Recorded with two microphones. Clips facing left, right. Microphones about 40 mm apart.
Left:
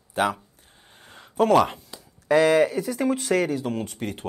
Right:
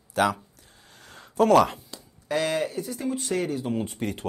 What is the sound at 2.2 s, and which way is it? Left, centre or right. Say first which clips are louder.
Speech: left 8 dB; left.